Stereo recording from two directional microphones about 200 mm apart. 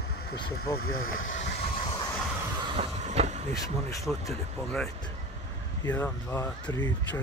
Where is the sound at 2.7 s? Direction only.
30° right (ahead or behind).